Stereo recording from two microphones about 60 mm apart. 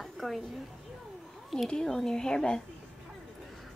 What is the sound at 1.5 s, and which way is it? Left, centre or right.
Speech, centre.